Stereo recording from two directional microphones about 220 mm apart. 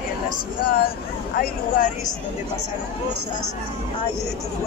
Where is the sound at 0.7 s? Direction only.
40° left (ahead or behind).